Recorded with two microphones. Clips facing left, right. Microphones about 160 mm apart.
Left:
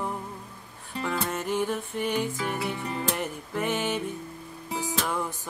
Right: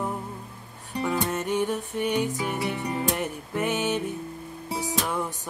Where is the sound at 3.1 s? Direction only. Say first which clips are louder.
Right 2 dB; centre (ahead or behind).